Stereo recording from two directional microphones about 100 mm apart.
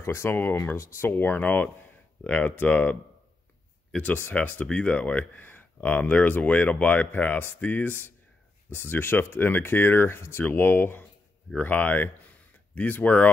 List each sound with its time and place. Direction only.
0.0 s speech: 25° left (ahead or behind)